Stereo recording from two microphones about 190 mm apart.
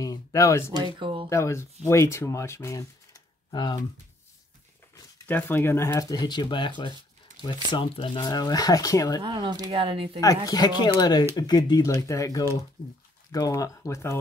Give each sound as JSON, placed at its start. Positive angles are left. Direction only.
{"t": 0.0, "sound": "a sound", "side_deg": 20}
{"t": 0.7, "sound": "speech", "side_deg": -25}
{"t": 1.3, "sound": "speech", "side_deg": 15}
{"t": 4.9, "sound": "speech", "side_deg": 10}
{"t": 9.2, "sound": "speech", "side_deg": -25}
{"t": 10.2, "sound": "speech", "side_deg": 20}